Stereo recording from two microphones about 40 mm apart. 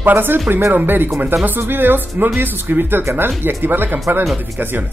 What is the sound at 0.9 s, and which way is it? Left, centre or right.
Speech, right.